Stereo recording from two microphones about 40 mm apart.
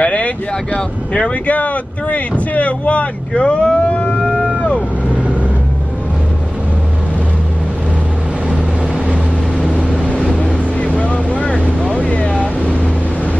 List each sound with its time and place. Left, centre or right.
0.0 s wind noise: left
0.7 s speech: left
1.5 s speech: left
10.0 s vehicle: left